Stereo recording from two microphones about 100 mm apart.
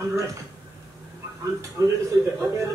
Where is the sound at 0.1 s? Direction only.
30° right (ahead or behind).